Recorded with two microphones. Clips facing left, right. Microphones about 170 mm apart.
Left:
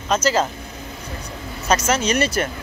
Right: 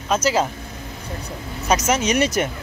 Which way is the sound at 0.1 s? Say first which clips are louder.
Even; 10° right (ahead or behind).